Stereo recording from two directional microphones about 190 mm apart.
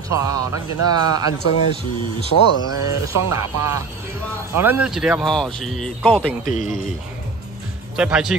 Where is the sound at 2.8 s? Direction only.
15° right (ahead or behind); by 6.3 s 5° left (ahead or behind).